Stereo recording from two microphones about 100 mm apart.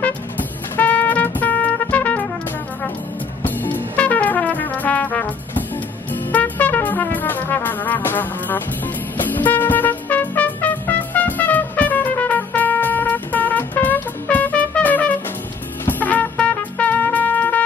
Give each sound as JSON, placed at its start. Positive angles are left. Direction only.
{"t": 0.0, "sound": "music", "side_deg": 15}
{"t": 3.4, "sound": "music", "side_deg": 20}
{"t": 6.1, "sound": "brass instrument", "side_deg": 15}
{"t": 15.8, "sound": "trumpet", "side_deg": 20}